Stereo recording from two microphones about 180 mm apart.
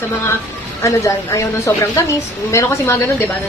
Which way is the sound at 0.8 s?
15° left (ahead or behind).